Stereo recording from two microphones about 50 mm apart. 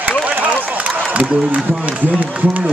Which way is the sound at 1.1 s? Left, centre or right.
Right.